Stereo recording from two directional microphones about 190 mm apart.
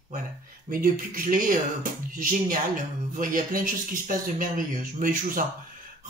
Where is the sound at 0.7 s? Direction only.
45° right (ahead or behind).